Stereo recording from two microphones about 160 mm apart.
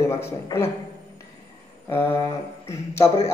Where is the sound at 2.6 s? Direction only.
15° left (ahead or behind).